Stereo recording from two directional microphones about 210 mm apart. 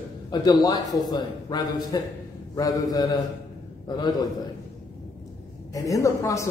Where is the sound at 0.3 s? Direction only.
20° left (ahead or behind).